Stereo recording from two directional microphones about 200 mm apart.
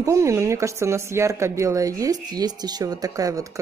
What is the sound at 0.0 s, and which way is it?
Speech, 15° right (ahead or behind).